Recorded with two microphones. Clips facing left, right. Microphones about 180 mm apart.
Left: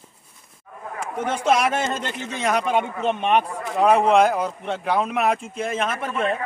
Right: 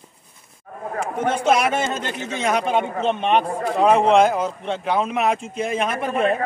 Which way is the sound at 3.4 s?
45° right (ahead or behind).